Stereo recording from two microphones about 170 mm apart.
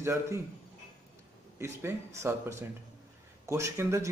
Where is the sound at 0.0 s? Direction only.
15° right (ahead or behind).